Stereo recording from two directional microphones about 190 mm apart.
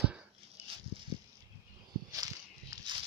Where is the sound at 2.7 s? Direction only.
20° right (ahead or behind).